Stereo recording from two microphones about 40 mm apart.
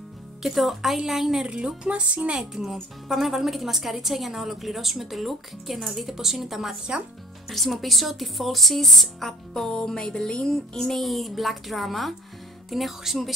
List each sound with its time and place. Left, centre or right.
0.4 s a woman's voice: centre
1.4 s speech: right
2.5 s a woman's voice: centre
9.6 s music: centre
10.4 s a woman's voice: centre